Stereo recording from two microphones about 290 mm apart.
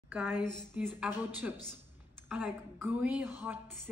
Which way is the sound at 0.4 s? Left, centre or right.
Right.